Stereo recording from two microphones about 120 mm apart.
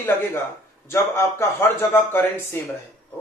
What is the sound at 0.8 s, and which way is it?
A man's voice, 20° left (ahead or behind).